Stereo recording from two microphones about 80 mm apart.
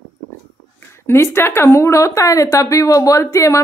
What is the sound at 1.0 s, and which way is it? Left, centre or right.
A woman's voice, left.